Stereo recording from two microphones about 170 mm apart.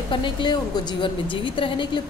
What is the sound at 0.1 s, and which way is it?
A woman's voice, 25° left (ahead or behind).